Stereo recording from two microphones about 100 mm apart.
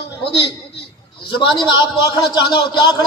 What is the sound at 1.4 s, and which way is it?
A man's voice, 50° left (ahead or behind).